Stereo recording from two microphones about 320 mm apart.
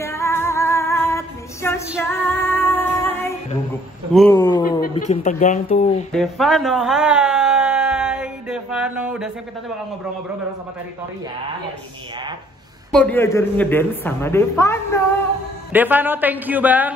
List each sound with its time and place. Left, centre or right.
0.0 s female singing: centre
4.1 s a man's voice: centre
4.4 s a sound: centre
5.0 s speech: left
6.1 s a sound: centre
12.9 s speech: centre
15.7 s a man's voice: centre